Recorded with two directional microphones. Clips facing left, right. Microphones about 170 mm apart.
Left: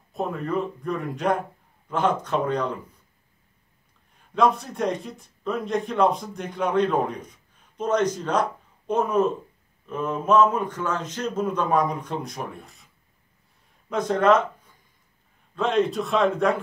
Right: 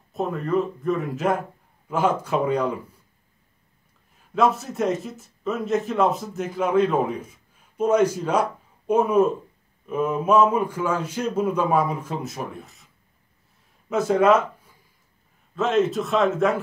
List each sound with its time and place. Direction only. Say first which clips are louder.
0.1 s a man's voice: right 3 dB; centre (ahead or behind)
4.2 s a man's voice: even; 5° right (ahead or behind)